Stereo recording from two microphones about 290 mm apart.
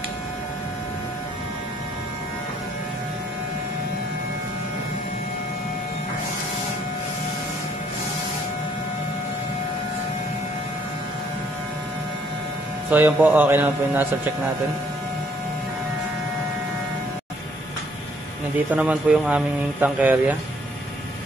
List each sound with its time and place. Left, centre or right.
12.9 s a man's voice: centre
18.7 s speech: centre